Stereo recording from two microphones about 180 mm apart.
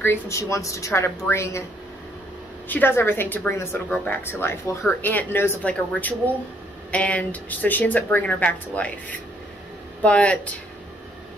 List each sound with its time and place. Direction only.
0.0 s a woman's voice: 15° left (ahead or behind)
2.7 s a woman's voice: 10° left (ahead or behind)